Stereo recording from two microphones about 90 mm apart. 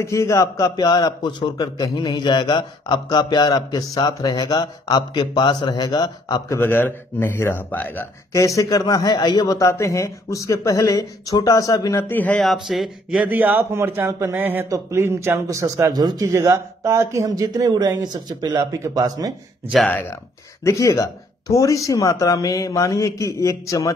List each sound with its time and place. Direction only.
0.0 s a man's voice: 35° left (ahead or behind); by 6.4 s 50° left (ahead or behind)
6.6 s a man's voice: 25° left (ahead or behind)
8.3 s speech: 35° left (ahead or behind)
12.0 s a man's voice: 20° left (ahead or behind)
12.5 s speech: centre (ahead or behind)
13.2 s a man's voice: 20° right (ahead or behind); by 16.3 s 50° right (ahead or behind)
16.3 s speech: 30° right (ahead or behind); by 18.6 s 50° right (ahead or behind)
18.6 s speech: 35° right (ahead or behind)
19.9 s a man's voice: 20° left (ahead or behind)
20.6 s speech: 35° left (ahead or behind)